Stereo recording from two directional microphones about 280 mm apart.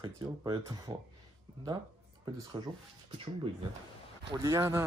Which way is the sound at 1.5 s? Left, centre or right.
Centre.